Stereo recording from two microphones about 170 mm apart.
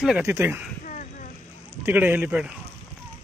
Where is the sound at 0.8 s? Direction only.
50° left (ahead or behind).